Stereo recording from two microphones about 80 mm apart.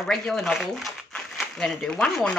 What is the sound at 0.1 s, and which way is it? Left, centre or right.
Speech, centre.